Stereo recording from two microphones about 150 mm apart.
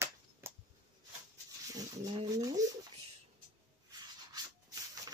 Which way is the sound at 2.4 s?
25° right (ahead or behind).